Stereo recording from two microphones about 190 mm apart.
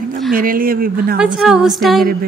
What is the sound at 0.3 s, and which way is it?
Speech, 50° right (ahead or behind).